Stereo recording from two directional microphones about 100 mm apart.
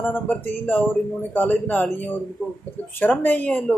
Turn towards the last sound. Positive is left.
turn(degrees=15)  # may be behind; listen again after turning